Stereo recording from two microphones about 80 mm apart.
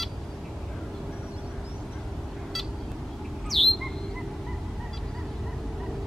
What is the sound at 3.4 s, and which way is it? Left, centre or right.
Bird, centre.